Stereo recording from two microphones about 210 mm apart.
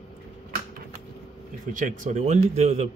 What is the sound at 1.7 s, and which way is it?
A man's voice, 40° right (ahead or behind).